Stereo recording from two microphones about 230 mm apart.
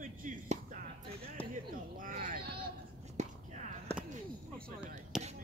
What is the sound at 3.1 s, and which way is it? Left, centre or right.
Whispering, right.